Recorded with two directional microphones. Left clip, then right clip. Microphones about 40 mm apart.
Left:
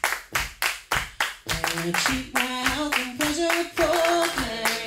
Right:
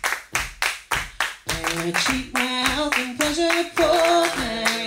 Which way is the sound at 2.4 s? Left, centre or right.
Right.